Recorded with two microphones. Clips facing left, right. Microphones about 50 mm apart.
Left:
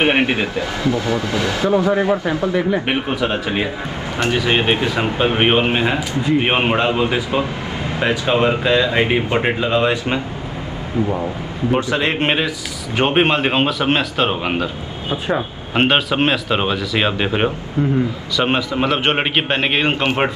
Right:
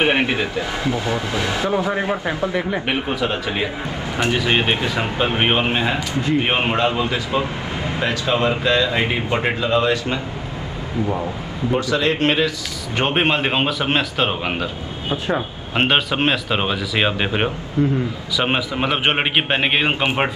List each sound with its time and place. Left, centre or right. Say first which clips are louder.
0.0 s speech: left 2 dB; left
0.8 s speech: left 5 dB; right
2.9 s a man's voice: left 2 dB; centre
4.2 s speech: left 1 dB; centre
5.3 s a man's voice: left 3 dB; centre; by 10.2 s left
11.7 s a man's voice: left 1 dB; left
12.9 s speech: left 3 dB; centre
17.8 s a man's voice: even; left
18.3 s speech: left 2 dB; centre